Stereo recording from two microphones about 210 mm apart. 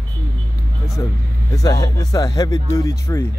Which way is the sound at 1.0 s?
15° left (ahead or behind).